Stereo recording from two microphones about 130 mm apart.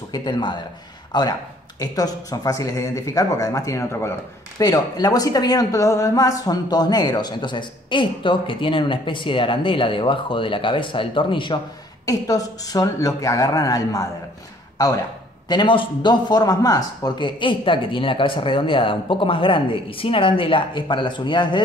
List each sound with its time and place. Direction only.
0.1 s a woman's voice: 35° left (ahead or behind)
12.1 s speech: 25° left (ahead or behind)
15.4 s a woman's voice: 35° left (ahead or behind)